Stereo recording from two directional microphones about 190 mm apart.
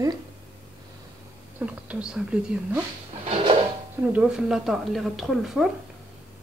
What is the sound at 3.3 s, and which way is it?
Drawer open or close, 30° right (ahead or behind).